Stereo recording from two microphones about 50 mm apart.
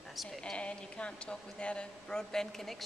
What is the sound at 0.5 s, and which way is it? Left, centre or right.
A man's voice, left.